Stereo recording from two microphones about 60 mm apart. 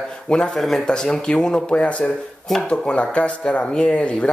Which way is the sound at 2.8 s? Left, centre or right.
Centre.